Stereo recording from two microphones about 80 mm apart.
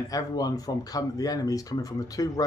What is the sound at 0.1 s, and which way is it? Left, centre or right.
Speech, left.